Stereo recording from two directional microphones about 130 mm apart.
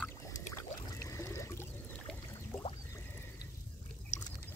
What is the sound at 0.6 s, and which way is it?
Pour, 20° left (ahead or behind).